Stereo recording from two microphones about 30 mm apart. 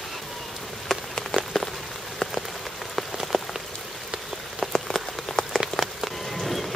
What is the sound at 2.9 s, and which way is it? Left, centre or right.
Rain on surface, centre.